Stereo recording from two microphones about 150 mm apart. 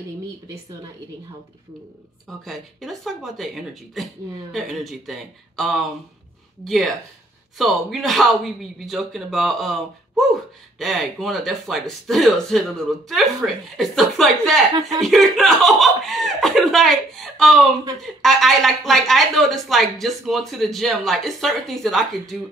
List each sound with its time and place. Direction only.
2.2 s speech: centre (ahead or behind)